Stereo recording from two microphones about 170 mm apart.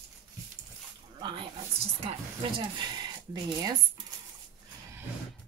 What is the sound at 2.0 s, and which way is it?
Speech, 30° right (ahead or behind).